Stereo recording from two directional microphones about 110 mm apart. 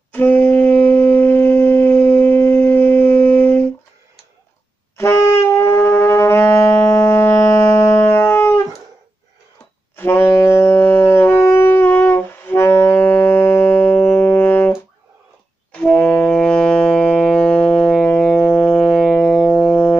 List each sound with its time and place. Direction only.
0.1 s wind instrument: 15° left (ahead or behind)
4.9 s wind instrument: 25° left (ahead or behind)
9.9 s saxophone: 20° left (ahead or behind)
15.7 s music: 10° left (ahead or behind)
19.4 s music: 15° left (ahead or behind)